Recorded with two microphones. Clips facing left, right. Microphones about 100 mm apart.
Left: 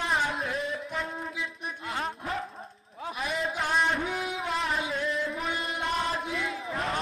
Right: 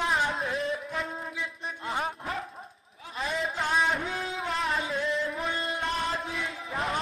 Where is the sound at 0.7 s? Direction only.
Centre (ahead or behind).